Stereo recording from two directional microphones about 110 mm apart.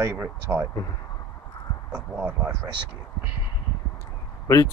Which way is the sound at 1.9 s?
15° right (ahead or behind).